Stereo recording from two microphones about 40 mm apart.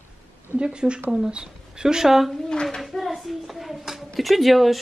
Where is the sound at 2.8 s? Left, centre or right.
Centre.